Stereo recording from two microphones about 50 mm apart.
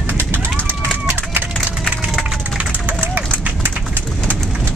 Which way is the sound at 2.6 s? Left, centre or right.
Right.